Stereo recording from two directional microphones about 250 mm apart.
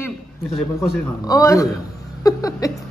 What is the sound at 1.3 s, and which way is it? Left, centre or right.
A woman's voice, centre.